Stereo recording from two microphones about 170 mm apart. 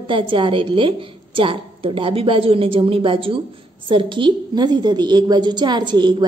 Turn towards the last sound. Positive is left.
turn(degrees=-25)  # may be behind; listen again after turning